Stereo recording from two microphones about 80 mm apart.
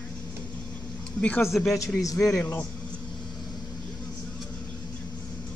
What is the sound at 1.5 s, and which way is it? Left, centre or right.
Speech, centre.